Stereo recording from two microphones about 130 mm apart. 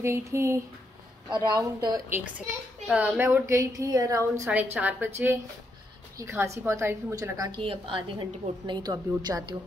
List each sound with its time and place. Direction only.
0.0 s a woman's voice: 20° right (ahead or behind)
1.3 s a woman's voice: 35° right (ahead or behind)
2.9 s a woman's voice: 15° right (ahead or behind)
4.7 s a woman's voice: 10° right (ahead or behind)
6.1 s a woman's voice: 25° right (ahead or behind)
7.5 s a woman's voice: 45° right (ahead or behind)